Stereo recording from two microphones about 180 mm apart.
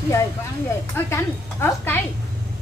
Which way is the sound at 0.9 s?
15° left (ahead or behind).